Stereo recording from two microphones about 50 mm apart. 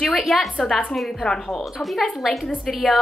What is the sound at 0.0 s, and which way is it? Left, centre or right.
A woman's voice, centre.